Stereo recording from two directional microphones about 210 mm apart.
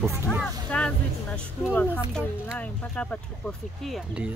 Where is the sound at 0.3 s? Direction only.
Centre (ahead or behind).